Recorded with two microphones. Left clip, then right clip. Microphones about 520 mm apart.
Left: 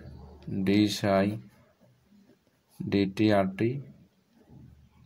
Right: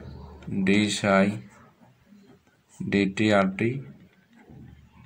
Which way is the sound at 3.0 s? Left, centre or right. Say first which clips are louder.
Right 3 dB; left.